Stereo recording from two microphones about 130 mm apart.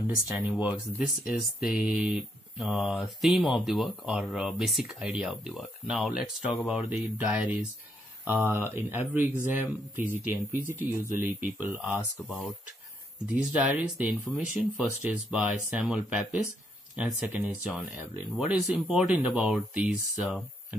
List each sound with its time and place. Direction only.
0.5 s speech: 5° right (ahead or behind)
13.3 s speech: 10° right (ahead or behind)